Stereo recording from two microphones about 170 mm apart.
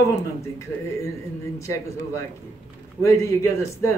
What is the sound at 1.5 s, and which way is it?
Speech, 15° left (ahead or behind).